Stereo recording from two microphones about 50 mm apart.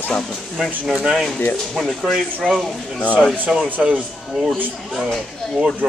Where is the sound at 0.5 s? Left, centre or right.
Centre.